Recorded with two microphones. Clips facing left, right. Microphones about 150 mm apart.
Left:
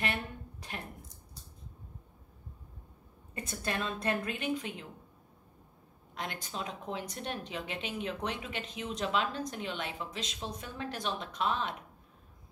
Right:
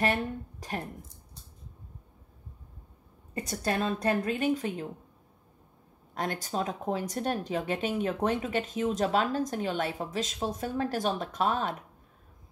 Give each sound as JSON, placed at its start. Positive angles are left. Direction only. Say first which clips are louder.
{"t": 0.0, "sound": "speech", "louder": "right 8 dB", "side_deg": -40}
{"t": 3.3, "sound": "a woman's voice", "louder": "right 6 dB", "side_deg": -40}
{"t": 6.1, "sound": "speech", "louder": "right 8 dB", "side_deg": -45}